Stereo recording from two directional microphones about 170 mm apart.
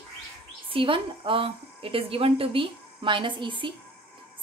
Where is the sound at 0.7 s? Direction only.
30° right (ahead or behind).